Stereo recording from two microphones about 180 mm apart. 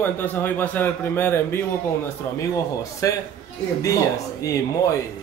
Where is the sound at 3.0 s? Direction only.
20° left (ahead or behind).